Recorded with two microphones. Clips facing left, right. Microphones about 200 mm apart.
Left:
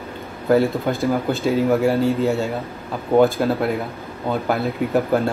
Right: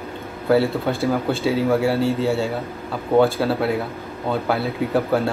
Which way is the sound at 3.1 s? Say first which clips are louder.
Left 1 dB; 15° left (ahead or behind).